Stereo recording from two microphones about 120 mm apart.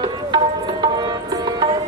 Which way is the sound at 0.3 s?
40° right (ahead or behind).